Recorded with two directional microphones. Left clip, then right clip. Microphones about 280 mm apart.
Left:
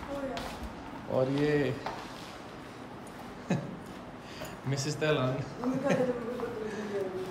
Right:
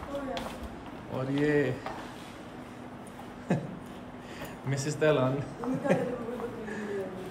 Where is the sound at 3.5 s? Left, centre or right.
Centre.